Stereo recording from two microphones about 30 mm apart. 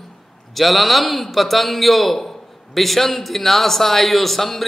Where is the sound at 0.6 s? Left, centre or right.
Centre.